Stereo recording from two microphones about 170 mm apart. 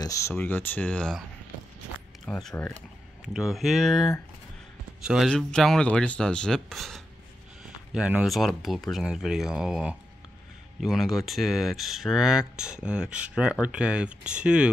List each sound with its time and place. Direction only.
0.0 s speech: 20° left (ahead or behind)
2.2 s speech: 5° left (ahead or behind)